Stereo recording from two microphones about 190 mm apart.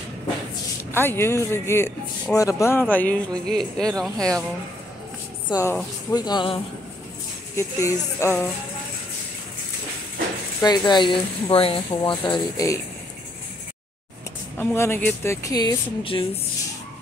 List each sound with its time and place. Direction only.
0.9 s speech: 10° left (ahead or behind)
5.5 s speech: 15° left (ahead or behind)
10.6 s speech: 20° left (ahead or behind)
14.6 s speech: 10° left (ahead or behind); by 16.3 s 30° left (ahead or behind)